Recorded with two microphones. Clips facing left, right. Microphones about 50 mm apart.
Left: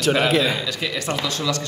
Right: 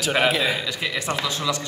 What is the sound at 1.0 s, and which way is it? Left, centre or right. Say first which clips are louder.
Speech: left 1 dB; centre.